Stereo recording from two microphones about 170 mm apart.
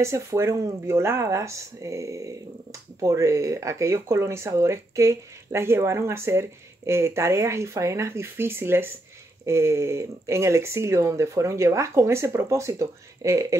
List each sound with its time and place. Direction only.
0.0 s speech: 15° right (ahead or behind)